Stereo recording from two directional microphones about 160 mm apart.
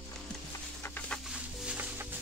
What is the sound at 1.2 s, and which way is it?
Music, 5° right (ahead or behind).